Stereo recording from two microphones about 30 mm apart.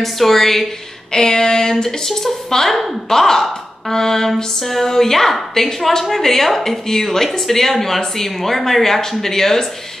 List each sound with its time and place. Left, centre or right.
0.0 s a woman's voice: centre
1.1 s a sound: left
1.7 s a woman's voice: centre